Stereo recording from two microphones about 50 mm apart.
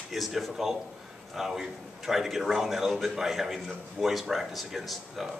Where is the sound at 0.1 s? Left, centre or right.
Centre.